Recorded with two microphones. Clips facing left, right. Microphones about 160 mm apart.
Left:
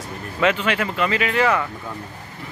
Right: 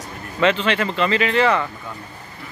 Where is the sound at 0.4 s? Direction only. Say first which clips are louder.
Right 2 dB; 10° left (ahead or behind).